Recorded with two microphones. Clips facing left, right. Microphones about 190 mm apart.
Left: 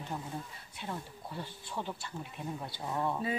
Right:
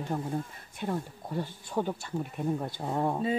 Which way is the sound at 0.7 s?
45° right (ahead or behind).